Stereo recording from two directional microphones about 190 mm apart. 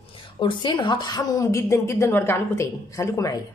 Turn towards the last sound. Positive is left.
turn(degrees=15)  # may be behind; listen again after turning